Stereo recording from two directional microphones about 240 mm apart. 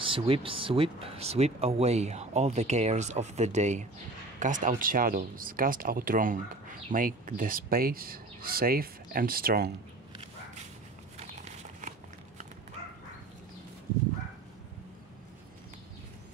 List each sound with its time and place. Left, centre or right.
0.0 s speech: right